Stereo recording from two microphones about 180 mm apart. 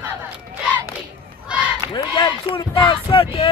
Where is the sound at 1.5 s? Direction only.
10° right (ahead or behind).